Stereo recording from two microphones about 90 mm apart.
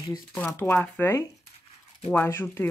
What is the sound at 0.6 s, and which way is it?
Speech, 20° left (ahead or behind).